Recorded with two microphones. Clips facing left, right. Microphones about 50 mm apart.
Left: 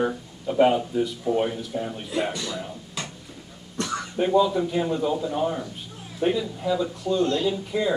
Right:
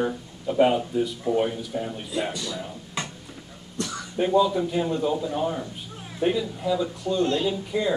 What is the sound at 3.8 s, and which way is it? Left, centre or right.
Throat clearing, left.